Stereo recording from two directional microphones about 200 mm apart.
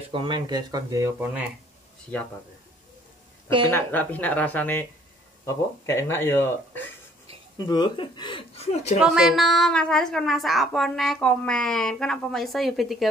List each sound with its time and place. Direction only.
0.1 s speech: 25° right (ahead or behind)
3.4 s speech: 25° right (ahead or behind)
3.7 s speech: 10° left (ahead or behind); by 8.9 s 30° left (ahead or behind)
9.0 s a woman's voice: centre (ahead or behind)